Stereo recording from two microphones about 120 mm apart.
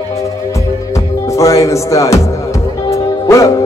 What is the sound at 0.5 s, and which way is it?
Music, 25° left (ahead or behind).